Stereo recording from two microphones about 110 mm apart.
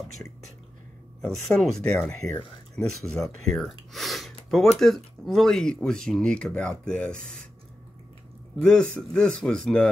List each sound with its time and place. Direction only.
1.2 s speech: 5° left (ahead or behind)
2.0 s speech: 15° left (ahead or behind)
2.9 s speech: centre (ahead or behind)
8.5 s speech: 10° left (ahead or behind)